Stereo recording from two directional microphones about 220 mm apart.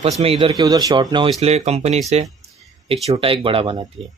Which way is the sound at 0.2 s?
25° right (ahead or behind).